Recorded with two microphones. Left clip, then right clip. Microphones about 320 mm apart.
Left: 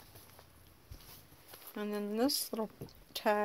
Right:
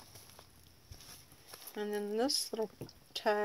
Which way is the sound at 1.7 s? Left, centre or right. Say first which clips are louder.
Right 2 dB; left.